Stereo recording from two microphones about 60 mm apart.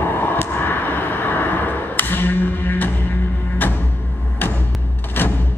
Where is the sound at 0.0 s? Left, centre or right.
Left.